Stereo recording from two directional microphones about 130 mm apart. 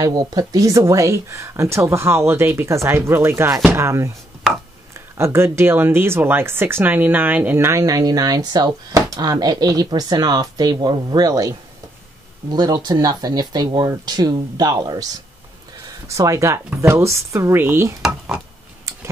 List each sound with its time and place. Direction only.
0.0 s speech: 30° right (ahead or behind)
5.1 s speech: 20° right (ahead or behind)
16.1 s speech: 25° right (ahead or behind)
18.0 s speech: 5° right (ahead or behind)